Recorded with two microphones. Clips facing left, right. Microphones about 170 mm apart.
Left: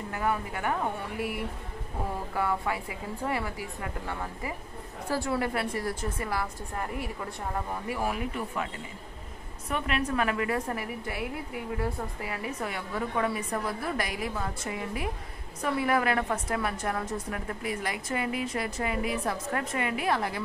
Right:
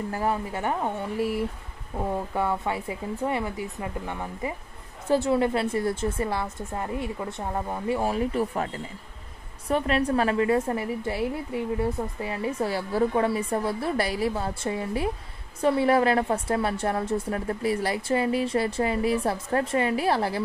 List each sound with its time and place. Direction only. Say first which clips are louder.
0.1 s a woman's voice: even; 30° right (ahead or behind)